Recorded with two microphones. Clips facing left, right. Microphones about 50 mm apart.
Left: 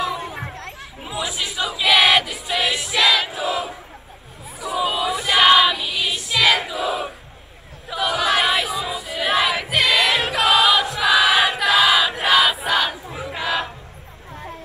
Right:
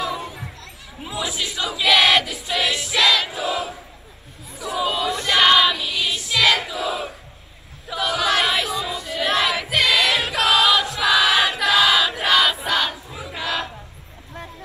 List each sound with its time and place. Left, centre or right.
0.2 s a sound: left
1.0 s choir: centre
4.6 s female singing: centre
7.9 s choir: centre
13.2 s battle cry: centre